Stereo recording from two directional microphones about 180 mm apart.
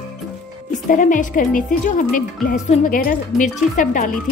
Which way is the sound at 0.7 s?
45° left (ahead or behind).